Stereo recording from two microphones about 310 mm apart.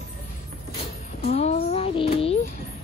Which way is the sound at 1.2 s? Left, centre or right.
Left.